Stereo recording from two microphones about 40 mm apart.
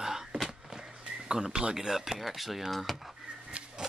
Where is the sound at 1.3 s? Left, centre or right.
Centre.